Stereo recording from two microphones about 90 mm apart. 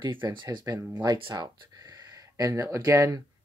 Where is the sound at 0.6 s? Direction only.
40° right (ahead or behind).